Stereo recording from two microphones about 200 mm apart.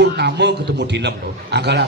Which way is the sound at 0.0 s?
55° right (ahead or behind).